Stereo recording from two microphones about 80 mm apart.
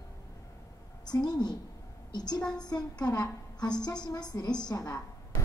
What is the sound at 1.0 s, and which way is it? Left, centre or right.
A woman's voice, left.